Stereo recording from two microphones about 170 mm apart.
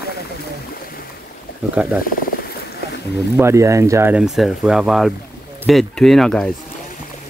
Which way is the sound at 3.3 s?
15° right (ahead or behind).